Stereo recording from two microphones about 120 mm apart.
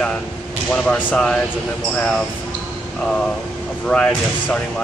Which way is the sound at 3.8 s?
5° left (ahead or behind).